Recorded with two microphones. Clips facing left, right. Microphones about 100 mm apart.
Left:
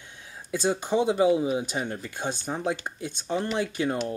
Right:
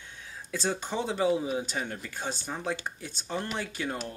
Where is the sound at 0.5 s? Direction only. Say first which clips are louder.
Left 6 dB; 15° left (ahead or behind).